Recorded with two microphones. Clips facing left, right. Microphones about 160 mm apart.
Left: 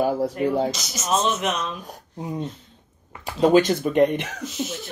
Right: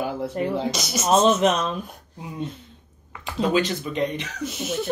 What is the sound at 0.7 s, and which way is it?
Speech, 65° right (ahead or behind).